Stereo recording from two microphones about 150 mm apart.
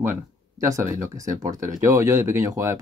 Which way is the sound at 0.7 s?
20° right (ahead or behind).